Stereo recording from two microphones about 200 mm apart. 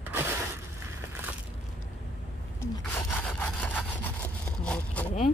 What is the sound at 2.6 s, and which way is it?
Sawing, 10° left (ahead or behind).